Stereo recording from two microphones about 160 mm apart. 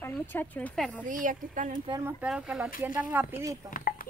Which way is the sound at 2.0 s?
5° right (ahead or behind).